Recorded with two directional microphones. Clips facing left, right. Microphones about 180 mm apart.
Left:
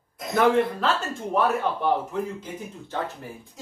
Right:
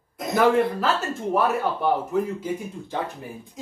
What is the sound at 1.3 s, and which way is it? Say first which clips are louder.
Speech: even; 10° right (ahead or behind).